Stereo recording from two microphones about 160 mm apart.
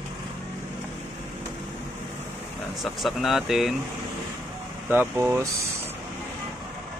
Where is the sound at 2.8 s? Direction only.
Centre (ahead or behind).